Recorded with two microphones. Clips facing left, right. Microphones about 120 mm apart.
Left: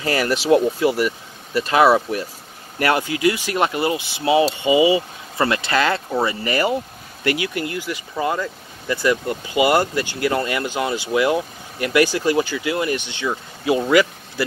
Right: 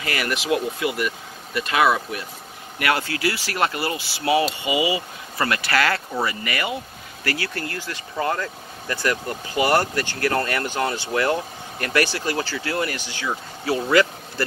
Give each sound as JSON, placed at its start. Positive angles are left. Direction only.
{"t": 0.0, "sound": "speech", "side_deg": 35}
{"t": 3.0, "sound": "speech", "side_deg": 20}
{"t": 7.2, "sound": "speech", "side_deg": 15}